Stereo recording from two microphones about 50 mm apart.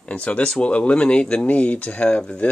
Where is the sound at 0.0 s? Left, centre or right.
Left.